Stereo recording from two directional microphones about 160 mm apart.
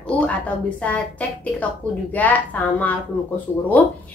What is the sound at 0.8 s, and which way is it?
A woman's voice, 10° left (ahead or behind).